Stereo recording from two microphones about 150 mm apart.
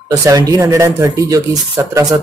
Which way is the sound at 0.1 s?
25° right (ahead or behind).